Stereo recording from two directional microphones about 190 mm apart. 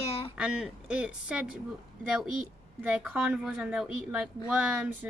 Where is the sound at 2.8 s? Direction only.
5° right (ahead or behind).